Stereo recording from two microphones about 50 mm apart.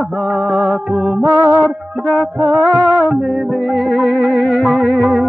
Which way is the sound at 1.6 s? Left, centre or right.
Left.